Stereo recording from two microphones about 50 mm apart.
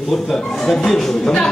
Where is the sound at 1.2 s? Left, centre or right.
Centre.